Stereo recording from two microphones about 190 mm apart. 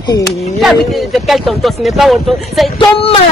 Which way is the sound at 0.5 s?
Centre (ahead or behind).